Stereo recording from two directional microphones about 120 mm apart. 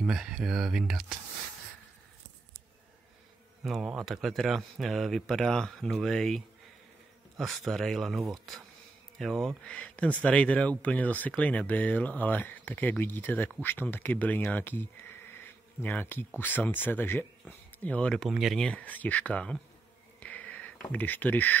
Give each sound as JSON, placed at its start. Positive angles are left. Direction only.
{"t": 0.0, "sound": "speech", "side_deg": -5}
{"t": 3.6, "sound": "speech", "side_deg": -5}
{"t": 20.2, "sound": "a sound", "side_deg": 10}